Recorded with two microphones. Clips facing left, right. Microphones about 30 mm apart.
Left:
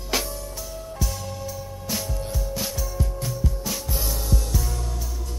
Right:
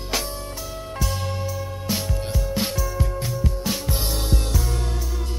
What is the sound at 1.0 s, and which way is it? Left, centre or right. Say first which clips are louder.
Music: right 5 dB; right.